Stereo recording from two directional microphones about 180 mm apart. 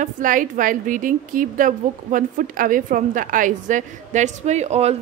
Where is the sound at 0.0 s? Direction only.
50° right (ahead or behind).